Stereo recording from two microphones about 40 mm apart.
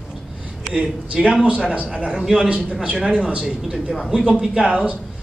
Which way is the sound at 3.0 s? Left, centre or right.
Right.